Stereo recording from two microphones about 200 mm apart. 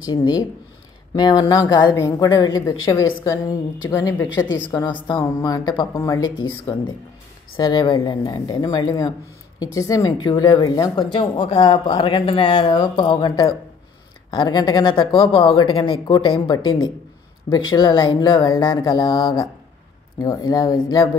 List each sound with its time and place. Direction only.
0.1 s a woman's voice: 20° left (ahead or behind)